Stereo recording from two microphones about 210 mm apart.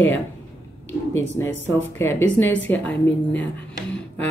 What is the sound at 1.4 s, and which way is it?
Speech, 10° left (ahead or behind).